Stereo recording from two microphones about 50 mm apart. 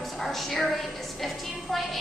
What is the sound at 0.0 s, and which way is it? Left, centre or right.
Music, centre.